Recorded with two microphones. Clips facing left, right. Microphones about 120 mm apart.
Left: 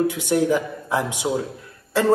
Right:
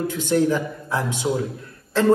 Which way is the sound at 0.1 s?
15° left (ahead or behind).